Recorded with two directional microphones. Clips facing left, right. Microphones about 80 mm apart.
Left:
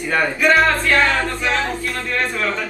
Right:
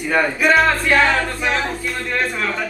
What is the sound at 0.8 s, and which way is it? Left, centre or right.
Speech, centre.